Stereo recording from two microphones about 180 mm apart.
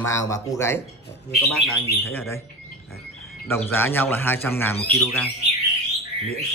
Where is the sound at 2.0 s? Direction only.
15° left (ahead or behind).